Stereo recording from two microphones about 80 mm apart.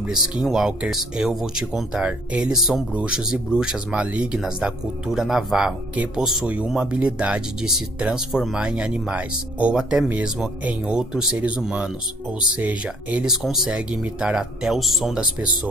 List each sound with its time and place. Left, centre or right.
0.1 s speech: centre
13.3 s speech: centre
15.1 s speech: centre